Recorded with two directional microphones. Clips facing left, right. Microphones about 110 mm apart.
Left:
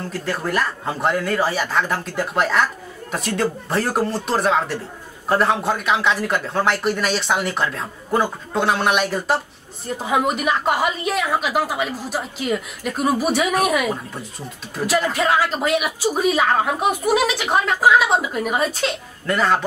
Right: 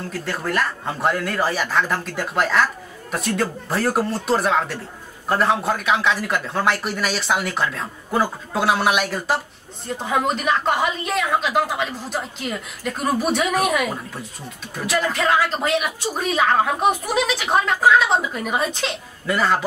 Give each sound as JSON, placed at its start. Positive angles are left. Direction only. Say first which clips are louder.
{"t": 0.0, "sound": "a woman's voice", "louder": "left 2 dB", "side_deg": 0}